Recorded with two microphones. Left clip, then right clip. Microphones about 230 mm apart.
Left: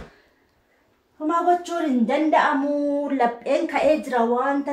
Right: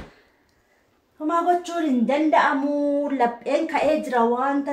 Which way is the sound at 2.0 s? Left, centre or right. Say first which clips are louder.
Even; centre.